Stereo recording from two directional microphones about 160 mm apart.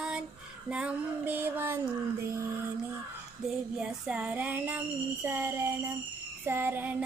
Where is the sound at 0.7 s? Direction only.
10° right (ahead or behind).